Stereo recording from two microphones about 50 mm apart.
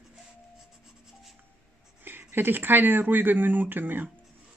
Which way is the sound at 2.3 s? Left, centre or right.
Right.